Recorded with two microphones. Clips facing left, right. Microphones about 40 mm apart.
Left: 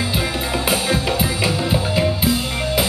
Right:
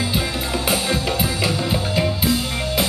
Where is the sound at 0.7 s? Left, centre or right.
Centre.